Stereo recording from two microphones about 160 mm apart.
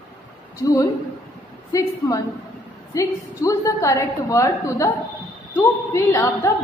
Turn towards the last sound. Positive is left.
turn(degrees=20)  # may be behind; listen again after turning